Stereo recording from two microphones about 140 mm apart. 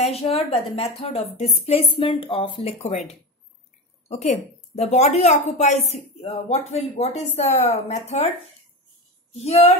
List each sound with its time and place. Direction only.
0.0 s a woman's voice: 50° left (ahead or behind)
9.4 s a woman's voice: 50° left (ahead or behind)